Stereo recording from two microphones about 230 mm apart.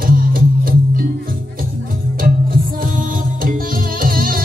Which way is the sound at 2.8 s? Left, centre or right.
Right.